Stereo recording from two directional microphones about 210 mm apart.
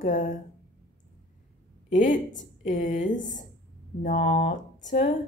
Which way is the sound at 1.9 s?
35° left (ahead or behind).